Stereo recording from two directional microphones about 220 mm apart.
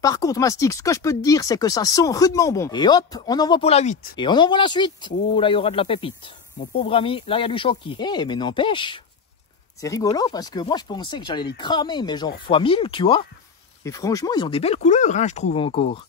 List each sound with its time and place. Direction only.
0.0 s speech: 15° left (ahead or behind); by 4.1 s 35° left (ahead or behind)
4.2 s speech: 20° left (ahead or behind)